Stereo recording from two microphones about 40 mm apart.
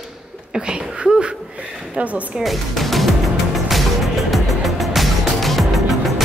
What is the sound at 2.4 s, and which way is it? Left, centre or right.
Music, centre.